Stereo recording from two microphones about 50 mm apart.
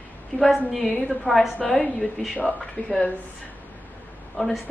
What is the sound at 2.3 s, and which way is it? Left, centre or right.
Speech, left.